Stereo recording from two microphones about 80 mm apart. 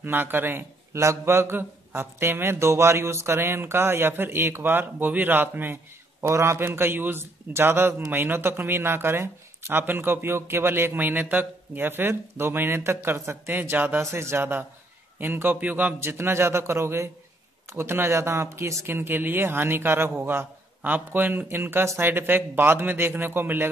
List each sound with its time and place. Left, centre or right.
0.0 s a man's voice: right